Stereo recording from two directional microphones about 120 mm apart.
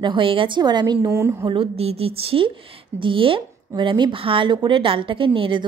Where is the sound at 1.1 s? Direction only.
25° right (ahead or behind).